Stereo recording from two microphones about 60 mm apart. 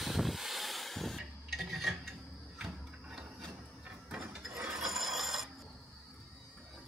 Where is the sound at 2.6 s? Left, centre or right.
Centre.